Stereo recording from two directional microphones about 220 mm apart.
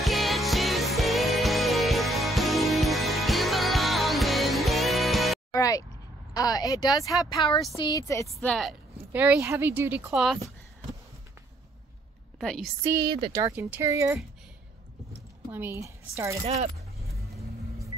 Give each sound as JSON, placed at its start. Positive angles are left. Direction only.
{"t": 0.0, "sound": "music", "side_deg": 0}
{"t": 5.5, "sound": "a sound", "side_deg": 15}
{"t": 6.3, "sound": "speech", "side_deg": 15}
{"t": 8.3, "sound": "speech", "side_deg": 0}
{"t": 12.4, "sound": "a woman's voice", "side_deg": 0}
{"t": 12.8, "sound": "speech", "side_deg": -15}
{"t": 15.5, "sound": "speech", "side_deg": -10}